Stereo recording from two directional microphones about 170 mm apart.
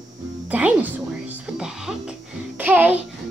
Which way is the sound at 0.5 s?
10° right (ahead or behind).